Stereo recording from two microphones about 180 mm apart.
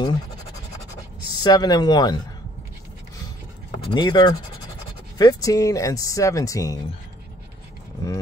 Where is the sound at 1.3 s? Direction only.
20° left (ahead or behind).